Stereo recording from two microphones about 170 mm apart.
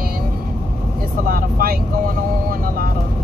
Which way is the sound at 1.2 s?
60° right (ahead or behind).